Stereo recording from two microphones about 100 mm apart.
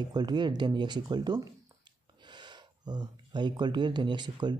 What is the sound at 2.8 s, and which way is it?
Speech, 45° right (ahead or behind).